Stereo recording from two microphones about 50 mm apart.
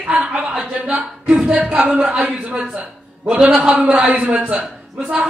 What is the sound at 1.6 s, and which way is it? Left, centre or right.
Speech, right.